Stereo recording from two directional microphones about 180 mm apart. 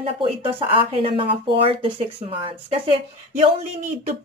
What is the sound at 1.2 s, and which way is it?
Speech, 30° right (ahead or behind).